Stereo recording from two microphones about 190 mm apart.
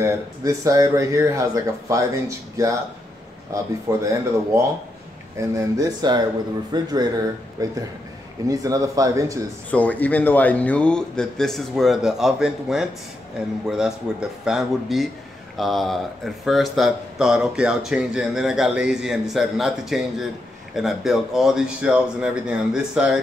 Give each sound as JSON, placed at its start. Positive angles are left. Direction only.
{"t": 0.0, "sound": "speech", "side_deg": -15}
{"t": 9.7, "sound": "speech", "side_deg": 10}